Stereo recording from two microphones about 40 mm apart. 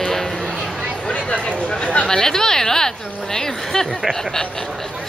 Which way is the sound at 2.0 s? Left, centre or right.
Centre.